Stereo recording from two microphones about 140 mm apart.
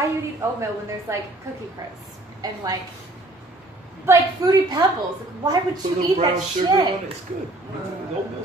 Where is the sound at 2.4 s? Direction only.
25° right (ahead or behind).